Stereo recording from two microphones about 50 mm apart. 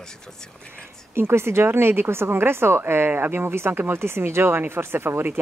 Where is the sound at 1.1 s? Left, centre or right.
Right.